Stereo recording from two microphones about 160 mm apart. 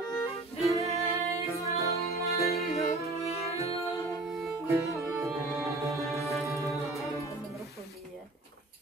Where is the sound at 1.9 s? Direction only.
20° left (ahead or behind).